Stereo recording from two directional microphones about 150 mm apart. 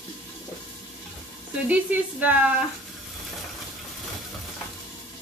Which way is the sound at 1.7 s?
10° right (ahead or behind).